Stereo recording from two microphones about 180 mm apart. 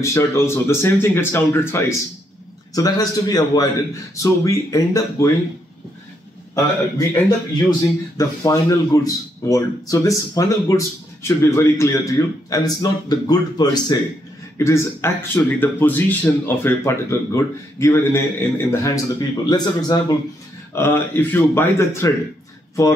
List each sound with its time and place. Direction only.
0.0 s a man's voice: 15° left (ahead or behind)
6.5 s a man's voice: 20° left (ahead or behind)